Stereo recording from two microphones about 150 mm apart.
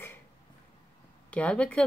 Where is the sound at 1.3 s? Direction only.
10° left (ahead or behind).